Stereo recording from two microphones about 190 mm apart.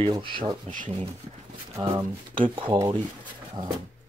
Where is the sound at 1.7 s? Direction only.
20° right (ahead or behind).